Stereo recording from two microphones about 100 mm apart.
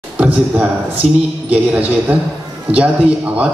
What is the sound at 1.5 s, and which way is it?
A man's voice, 15° right (ahead or behind).